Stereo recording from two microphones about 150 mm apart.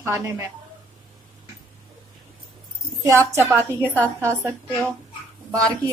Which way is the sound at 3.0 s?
20° right (ahead or behind).